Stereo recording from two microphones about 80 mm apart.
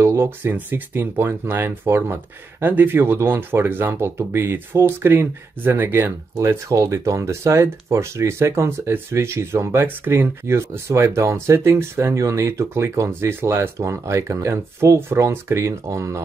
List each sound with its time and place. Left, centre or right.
0.0 s speech: right
6.3 s speech: right